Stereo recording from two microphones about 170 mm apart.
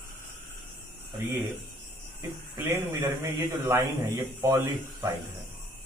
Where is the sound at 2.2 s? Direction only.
15° right (ahead or behind).